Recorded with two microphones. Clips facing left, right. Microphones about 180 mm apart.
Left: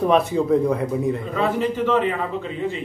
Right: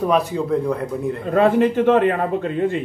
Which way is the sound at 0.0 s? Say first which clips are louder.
Left 1 dB; centre (ahead or behind).